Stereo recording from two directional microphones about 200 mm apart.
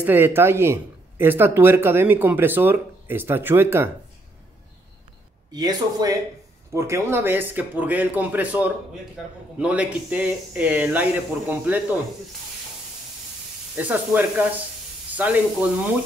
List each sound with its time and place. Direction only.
0.0 s speech: 10° right (ahead or behind)
5.5 s speech: 20° right (ahead or behind)
13.7 s speech: 10° right (ahead or behind)